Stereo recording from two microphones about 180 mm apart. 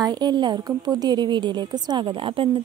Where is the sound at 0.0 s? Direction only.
25° right (ahead or behind).